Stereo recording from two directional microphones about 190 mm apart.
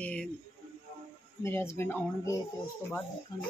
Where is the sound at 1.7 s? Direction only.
10° left (ahead or behind).